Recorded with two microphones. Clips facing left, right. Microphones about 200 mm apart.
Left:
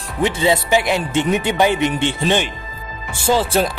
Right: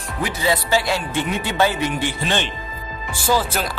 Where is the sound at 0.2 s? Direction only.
20° left (ahead or behind).